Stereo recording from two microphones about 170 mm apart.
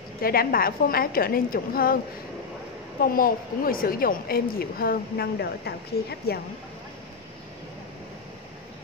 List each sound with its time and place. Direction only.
0.2 s a woman's voice: 60° left (ahead or behind)
3.0 s a woman's voice: 60° left (ahead or behind)